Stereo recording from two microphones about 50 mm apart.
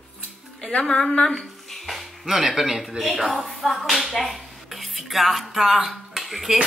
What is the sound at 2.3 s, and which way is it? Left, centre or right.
Speech, centre.